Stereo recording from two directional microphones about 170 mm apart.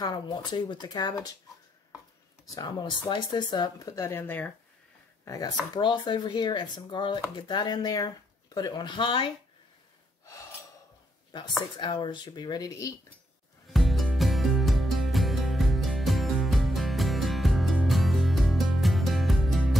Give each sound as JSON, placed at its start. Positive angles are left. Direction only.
{"t": 0.0, "sound": "speech", "side_deg": 25}
{"t": 2.4, "sound": "speech", "side_deg": 25}
{"t": 5.2, "sound": "speech", "side_deg": 20}
{"t": 11.3, "sound": "speech", "side_deg": 25}
{"t": 13.7, "sound": "music", "side_deg": 0}